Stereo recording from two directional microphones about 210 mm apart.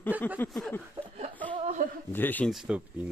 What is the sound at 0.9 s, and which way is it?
Chuckle, 30° right (ahead or behind).